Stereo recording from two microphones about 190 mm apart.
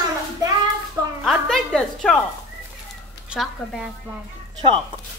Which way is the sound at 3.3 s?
5° right (ahead or behind).